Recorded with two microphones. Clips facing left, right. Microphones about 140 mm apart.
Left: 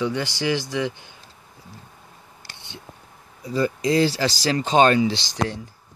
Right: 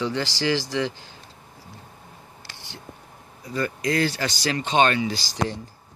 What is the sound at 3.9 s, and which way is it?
Speech, 30° left (ahead or behind).